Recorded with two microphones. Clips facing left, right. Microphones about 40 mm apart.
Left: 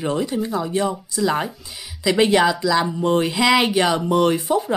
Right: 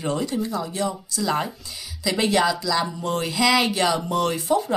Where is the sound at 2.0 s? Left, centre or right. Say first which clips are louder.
Left 5 dB; left.